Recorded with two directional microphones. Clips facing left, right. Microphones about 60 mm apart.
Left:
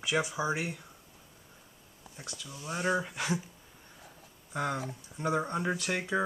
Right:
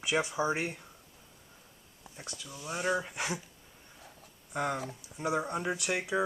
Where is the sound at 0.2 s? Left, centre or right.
Centre.